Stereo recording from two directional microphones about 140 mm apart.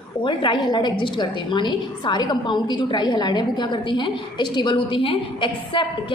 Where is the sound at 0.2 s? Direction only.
35° left (ahead or behind).